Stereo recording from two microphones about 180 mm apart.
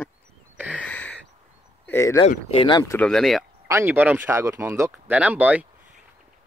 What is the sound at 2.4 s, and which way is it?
Speech, 30° left (ahead or behind).